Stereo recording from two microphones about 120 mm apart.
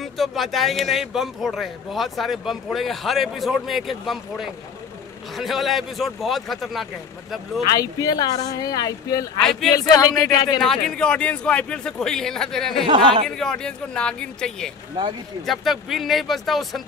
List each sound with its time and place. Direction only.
0.0 s a man's voice: centre (ahead or behind)
7.8 s speech: 30° left (ahead or behind)
10.6 s a man's voice: 5° left (ahead or behind)
12.8 s speech: 45° right (ahead or behind)
13.4 s a man's voice: 5° left (ahead or behind)